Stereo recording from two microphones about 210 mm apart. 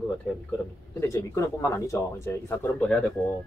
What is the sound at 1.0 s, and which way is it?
Speech, 15° left (ahead or behind).